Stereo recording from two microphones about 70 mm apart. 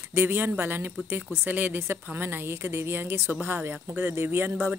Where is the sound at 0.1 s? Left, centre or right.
Right.